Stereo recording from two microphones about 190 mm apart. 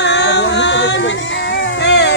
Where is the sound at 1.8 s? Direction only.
70° left (ahead or behind).